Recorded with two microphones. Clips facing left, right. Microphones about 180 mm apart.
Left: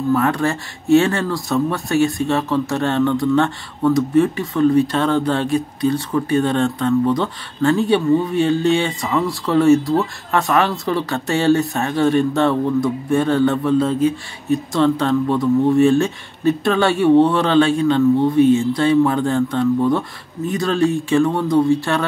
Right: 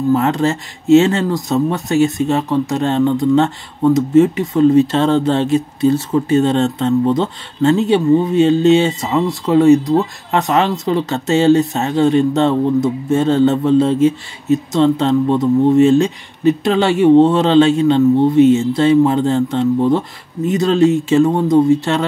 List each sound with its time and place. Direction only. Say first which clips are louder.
0.1 s speech: right 2 dB; 20° right (ahead or behind)